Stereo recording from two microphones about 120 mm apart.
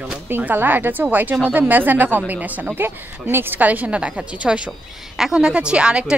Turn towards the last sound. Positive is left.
turn(degrees=-10)  # may be behind; listen again after turning